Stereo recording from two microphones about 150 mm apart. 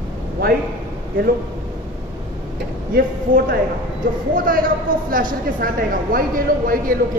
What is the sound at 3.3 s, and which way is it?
A man's voice, 65° right (ahead or behind).